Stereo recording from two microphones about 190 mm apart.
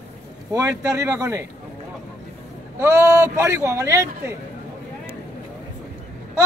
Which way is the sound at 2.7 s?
15° right (ahead or behind).